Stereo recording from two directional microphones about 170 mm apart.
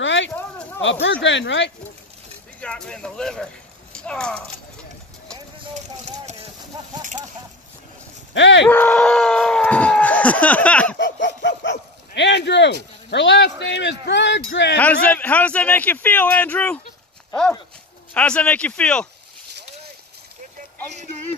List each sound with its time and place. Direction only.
0.0 s a sound: 90° left
1.0 s speech: 90° left
2.6 s speech: 5° left (ahead or behind)
7.0 s a sound: 50° right (ahead or behind)
8.3 s speech: 90° left
8.6 s a sound: 10° left (ahead or behind)
11.0 s laughter: 90° left
11.4 s speech: 90° left
14.8 s a man's voice: 10° left (ahead or behind)
18.1 s a man's voice: 5° left (ahead or behind)